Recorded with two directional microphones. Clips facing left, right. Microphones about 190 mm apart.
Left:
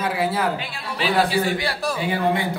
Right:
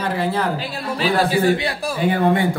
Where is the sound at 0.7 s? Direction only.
40° right (ahead or behind).